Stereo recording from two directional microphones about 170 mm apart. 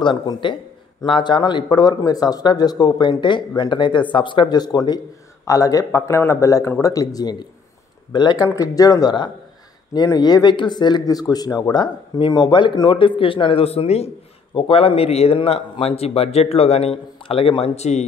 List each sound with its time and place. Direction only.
0.0 s speech: 25° left (ahead or behind)